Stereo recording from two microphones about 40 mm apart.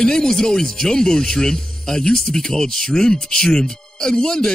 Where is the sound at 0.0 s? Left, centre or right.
Centre.